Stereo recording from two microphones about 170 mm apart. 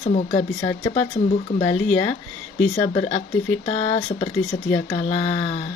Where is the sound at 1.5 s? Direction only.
25° left (ahead or behind).